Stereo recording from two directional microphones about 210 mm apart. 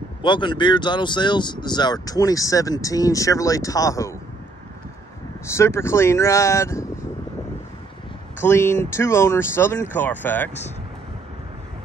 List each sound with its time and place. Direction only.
0.2 s speech: 20° left (ahead or behind)
5.6 s speech: 15° left (ahead or behind)
8.4 s speech: 10° left (ahead or behind)